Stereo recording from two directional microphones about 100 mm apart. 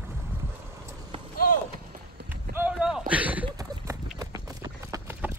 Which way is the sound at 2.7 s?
5° right (ahead or behind).